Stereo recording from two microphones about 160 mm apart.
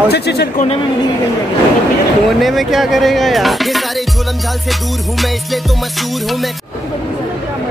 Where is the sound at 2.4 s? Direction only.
Centre (ahead or behind).